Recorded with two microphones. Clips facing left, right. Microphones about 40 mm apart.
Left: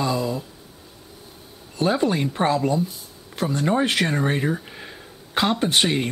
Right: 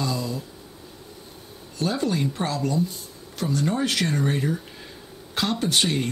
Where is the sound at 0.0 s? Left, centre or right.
Left.